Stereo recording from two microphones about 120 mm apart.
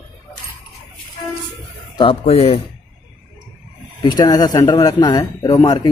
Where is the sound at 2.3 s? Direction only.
60° left (ahead or behind).